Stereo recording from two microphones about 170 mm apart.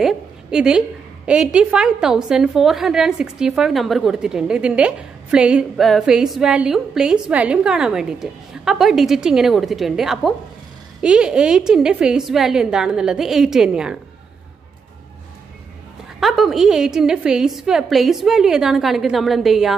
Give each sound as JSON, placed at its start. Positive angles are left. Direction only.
{"t": 0.0, "sound": "a woman's voice", "side_deg": -5}
{"t": 16.2, "sound": "a woman's voice", "side_deg": 0}